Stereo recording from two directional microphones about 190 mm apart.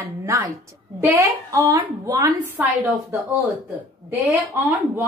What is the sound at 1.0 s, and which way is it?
A woman's voice, 10° right (ahead or behind).